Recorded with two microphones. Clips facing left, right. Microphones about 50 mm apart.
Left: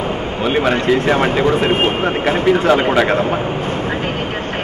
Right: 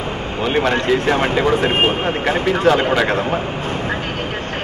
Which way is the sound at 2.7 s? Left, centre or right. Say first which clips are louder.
Left 3 dB; centre.